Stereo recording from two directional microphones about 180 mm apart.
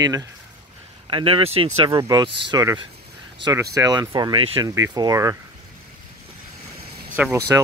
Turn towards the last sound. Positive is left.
turn(degrees=-10)  # may be behind; listen again after turning